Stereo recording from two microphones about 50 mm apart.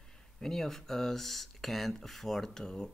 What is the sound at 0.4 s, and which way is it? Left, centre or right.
Speech, centre.